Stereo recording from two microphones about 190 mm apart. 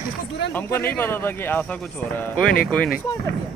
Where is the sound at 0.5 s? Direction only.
10° left (ahead or behind).